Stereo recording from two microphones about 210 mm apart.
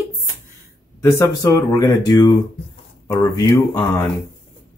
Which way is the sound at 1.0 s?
10° left (ahead or behind).